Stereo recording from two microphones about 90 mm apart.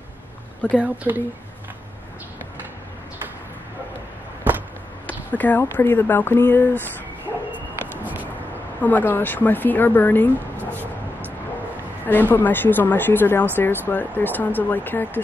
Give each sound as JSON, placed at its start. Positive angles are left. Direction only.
{"t": 0.7, "sound": "speech", "side_deg": -20}
{"t": 4.5, "sound": "a sound", "side_deg": -20}
{"t": 5.0, "sound": "speech", "side_deg": 15}
{"t": 7.5, "sound": "bow-wow", "side_deg": -20}
{"t": 8.8, "sound": "speech", "side_deg": 20}